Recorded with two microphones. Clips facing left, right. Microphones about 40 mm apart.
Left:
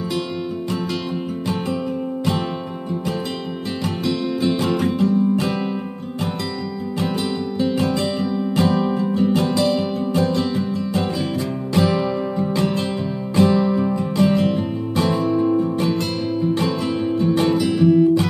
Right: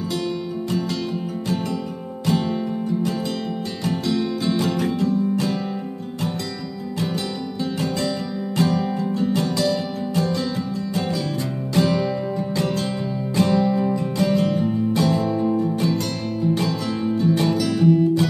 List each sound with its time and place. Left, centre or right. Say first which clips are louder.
3.8 s music: even; centre
7.6 s music: left 4 dB; left
11.7 s music: left 1 dB; centre
13.4 s music: left 3 dB; left
17.3 s music: left 3 dB; left